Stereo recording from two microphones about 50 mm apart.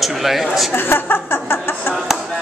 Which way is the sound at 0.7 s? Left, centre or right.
Left.